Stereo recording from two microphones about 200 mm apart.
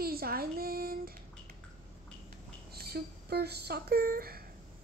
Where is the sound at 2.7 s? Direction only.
50° right (ahead or behind).